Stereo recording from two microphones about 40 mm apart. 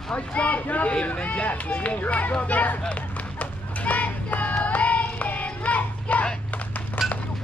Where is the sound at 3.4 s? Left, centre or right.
Left.